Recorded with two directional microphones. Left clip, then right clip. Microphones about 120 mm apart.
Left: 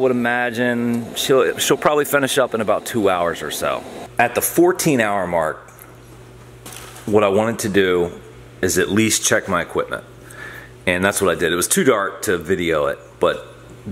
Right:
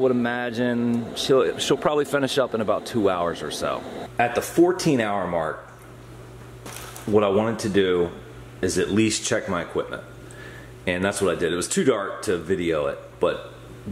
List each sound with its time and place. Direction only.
0.0 s speech: 20° left (ahead or behind)
4.2 s speech: 35° left (ahead or behind)
7.1 s speech: 30° left (ahead or behind)